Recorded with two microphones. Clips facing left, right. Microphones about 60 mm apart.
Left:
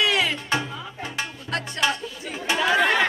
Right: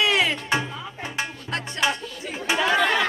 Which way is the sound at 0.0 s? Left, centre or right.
Right.